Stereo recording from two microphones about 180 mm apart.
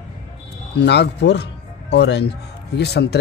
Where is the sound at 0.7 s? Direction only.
70° left (ahead or behind).